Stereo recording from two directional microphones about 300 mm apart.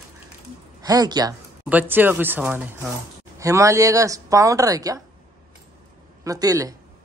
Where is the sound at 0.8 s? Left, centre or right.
Centre.